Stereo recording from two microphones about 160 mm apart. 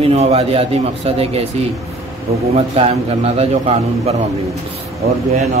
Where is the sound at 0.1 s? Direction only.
40° right (ahead or behind).